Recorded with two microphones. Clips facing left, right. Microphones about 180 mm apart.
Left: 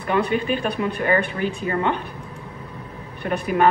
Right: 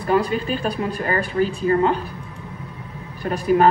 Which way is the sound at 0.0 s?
35° right (ahead or behind).